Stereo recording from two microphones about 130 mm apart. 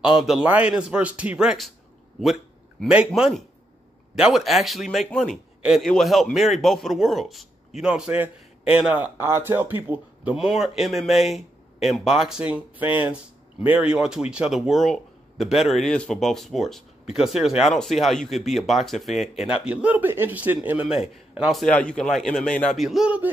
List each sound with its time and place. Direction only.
0.0 s a man's voice: 5° right (ahead or behind)
3.2 s a man's voice: centre (ahead or behind)
10.3 s a man's voice: 5° right (ahead or behind)
22.8 s speech: 5° right (ahead or behind)